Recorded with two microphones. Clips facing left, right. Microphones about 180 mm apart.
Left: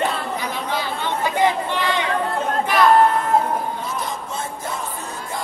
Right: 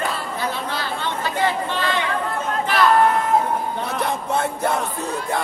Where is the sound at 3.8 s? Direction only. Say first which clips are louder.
Right 4 dB; 65° right (ahead or behind).